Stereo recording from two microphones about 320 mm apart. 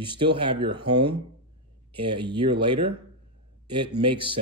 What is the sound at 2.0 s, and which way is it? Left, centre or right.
Speech, centre.